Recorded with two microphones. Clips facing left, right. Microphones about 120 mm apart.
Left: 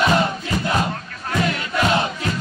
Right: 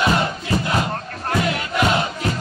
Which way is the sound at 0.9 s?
40° right (ahead or behind).